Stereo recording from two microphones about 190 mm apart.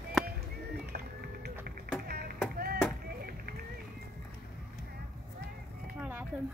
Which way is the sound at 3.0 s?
55° right (ahead or behind).